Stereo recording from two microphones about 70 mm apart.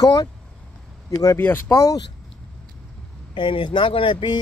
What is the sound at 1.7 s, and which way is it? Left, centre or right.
Speech, left.